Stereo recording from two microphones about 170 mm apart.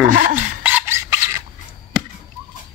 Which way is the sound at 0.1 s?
50° right (ahead or behind).